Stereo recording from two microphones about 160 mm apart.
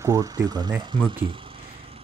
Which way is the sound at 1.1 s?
35° right (ahead or behind).